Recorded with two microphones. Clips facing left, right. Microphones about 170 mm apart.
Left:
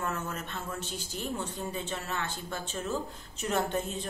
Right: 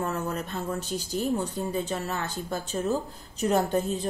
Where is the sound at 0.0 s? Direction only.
35° right (ahead or behind).